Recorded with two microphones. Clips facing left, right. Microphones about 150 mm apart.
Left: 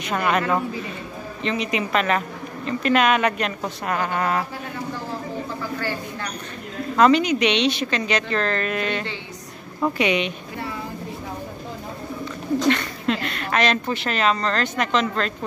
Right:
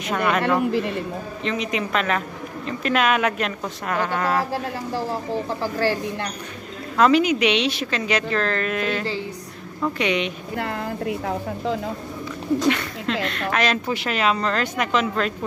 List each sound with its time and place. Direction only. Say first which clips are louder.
0.0 s speech: even; centre (ahead or behind)
0.7 s a woman's voice: right 8 dB; 70° right (ahead or behind)
1.4 s speech: left 1 dB; centre (ahead or behind)
5.6 s speech: right 6 dB; 35° right (ahead or behind)
7.0 s speech: even; 5° right (ahead or behind)
10.6 s a woman's voice: right 5 dB; 70° right (ahead or behind)
13.0 s a woman's voice: even; 5° left (ahead or behind)